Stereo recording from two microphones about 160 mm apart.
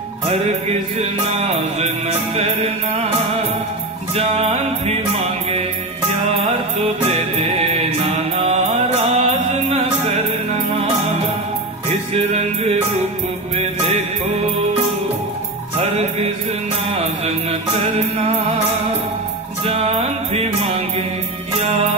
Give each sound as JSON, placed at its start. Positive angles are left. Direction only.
{"t": 0.3, "sound": "music", "side_deg": -40}
{"t": 4.1, "sound": "music", "side_deg": -40}
{"t": 7.1, "sound": "music", "side_deg": -45}
{"t": 12.1, "sound": "music", "side_deg": -40}
{"t": 16.9, "sound": "music", "side_deg": -40}
{"t": 19.6, "sound": "music", "side_deg": -40}